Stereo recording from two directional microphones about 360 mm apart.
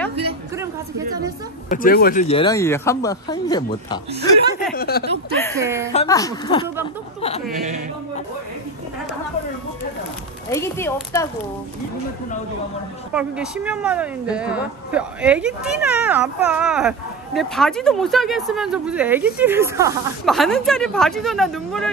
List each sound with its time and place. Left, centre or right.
1.7 s speech: left
4.7 s speech: left
5.3 s speech: centre
5.6 s a woman's voice: centre
5.9 s speech: centre
10.5 s speech: centre
13.1 s speech: centre